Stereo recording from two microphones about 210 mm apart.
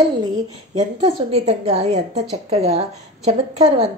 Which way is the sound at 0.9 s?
30° right (ahead or behind).